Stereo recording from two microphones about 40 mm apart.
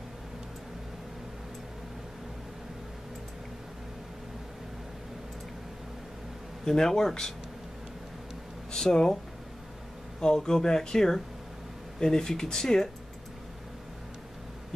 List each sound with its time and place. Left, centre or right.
6.6 s speech: centre
8.7 s speech: centre
10.2 s speech: centre